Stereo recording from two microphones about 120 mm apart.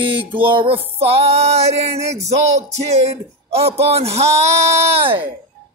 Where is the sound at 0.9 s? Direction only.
55° right (ahead or behind).